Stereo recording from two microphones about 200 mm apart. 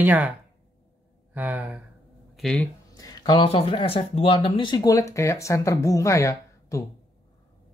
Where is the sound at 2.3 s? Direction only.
Centre (ahead or behind).